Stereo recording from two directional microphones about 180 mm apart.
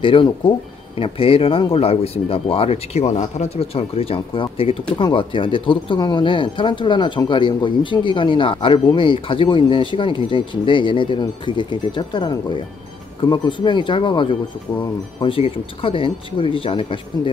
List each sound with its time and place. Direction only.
0.0 s speech: 30° left (ahead or behind)